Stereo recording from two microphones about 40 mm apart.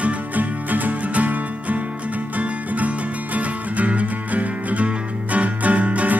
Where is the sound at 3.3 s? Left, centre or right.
Right.